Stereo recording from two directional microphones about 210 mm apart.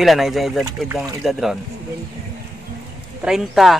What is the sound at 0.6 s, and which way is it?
Speech, 15° right (ahead or behind).